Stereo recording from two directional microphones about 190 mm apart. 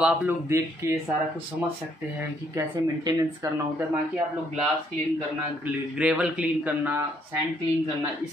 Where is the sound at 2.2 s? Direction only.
15° right (ahead or behind).